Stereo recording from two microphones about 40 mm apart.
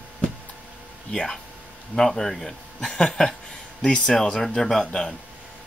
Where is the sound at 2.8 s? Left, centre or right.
Left.